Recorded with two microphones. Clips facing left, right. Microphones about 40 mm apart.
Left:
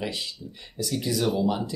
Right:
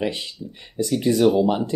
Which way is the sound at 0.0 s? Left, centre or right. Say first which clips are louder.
Right 6 dB; right.